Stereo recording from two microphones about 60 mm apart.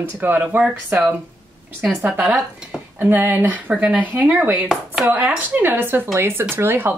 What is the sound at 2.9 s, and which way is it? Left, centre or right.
Speech, right.